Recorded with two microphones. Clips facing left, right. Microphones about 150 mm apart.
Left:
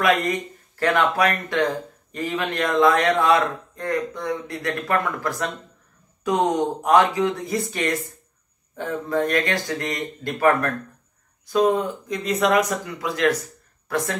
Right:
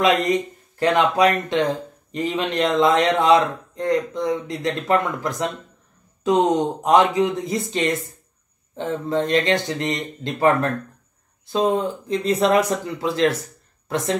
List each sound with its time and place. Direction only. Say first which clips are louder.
0.0 s speech: right 3 dB; 20° right (ahead or behind)